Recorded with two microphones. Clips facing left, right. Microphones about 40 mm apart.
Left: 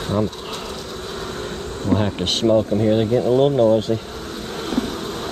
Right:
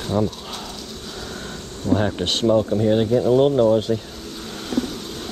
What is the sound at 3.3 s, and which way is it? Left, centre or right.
Speech, centre.